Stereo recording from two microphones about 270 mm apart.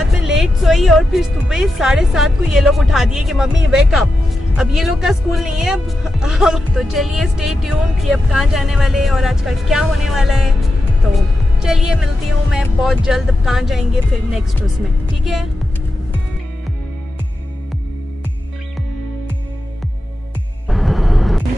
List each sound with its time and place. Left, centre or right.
0.0 s speech: centre
11.6 s speech: centre
20.6 s vehicle: centre